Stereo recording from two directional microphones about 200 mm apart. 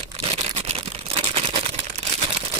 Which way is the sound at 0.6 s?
30° right (ahead or behind).